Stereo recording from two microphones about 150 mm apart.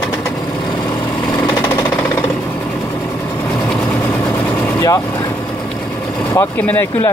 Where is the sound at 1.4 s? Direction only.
25° left (ahead or behind).